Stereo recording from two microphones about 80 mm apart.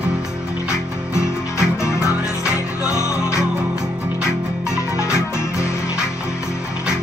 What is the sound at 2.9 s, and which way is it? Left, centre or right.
Music, left.